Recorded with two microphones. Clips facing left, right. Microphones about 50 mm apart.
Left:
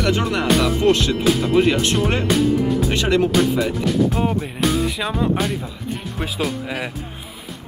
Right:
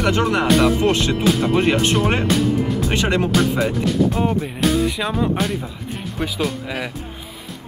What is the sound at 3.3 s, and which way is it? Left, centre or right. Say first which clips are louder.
Speech: even; centre.